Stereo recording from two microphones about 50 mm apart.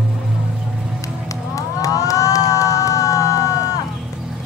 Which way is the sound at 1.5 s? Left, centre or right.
Left.